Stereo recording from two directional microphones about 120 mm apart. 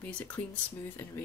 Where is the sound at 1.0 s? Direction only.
20° left (ahead or behind).